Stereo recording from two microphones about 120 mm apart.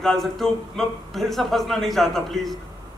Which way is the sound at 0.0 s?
5° left (ahead or behind).